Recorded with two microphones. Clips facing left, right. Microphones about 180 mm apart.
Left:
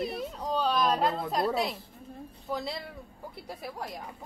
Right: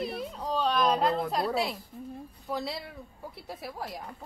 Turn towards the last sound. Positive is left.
turn(degrees=0)  # may be behind; listen again after turning